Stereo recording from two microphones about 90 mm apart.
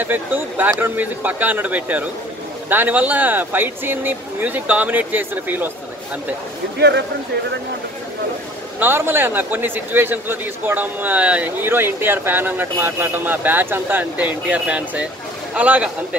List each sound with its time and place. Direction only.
0.0 s a man's voice: 20° right (ahead or behind)
8.7 s a man's voice: 25° right (ahead or behind)